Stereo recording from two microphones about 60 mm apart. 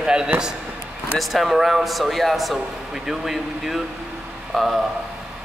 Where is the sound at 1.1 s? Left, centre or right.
Centre.